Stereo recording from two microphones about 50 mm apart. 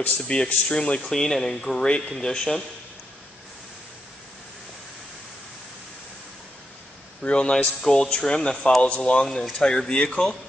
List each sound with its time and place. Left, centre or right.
0.3 s speech: centre
1.1 s speech: centre
7.2 s speech: left
7.5 s speech: centre
8.8 s speech: left
9.1 s speech: centre